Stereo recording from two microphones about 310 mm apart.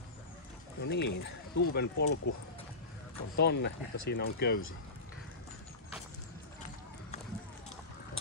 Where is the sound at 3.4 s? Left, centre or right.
Left.